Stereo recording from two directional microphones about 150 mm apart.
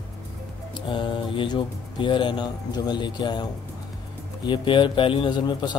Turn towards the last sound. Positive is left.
turn(degrees=30)  # may be behind; listen again after turning